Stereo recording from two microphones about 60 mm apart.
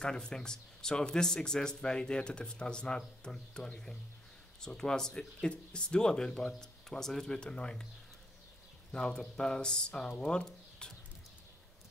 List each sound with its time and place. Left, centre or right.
0.0 s speech: centre
7.3 s speech: centre
8.9 s speech: centre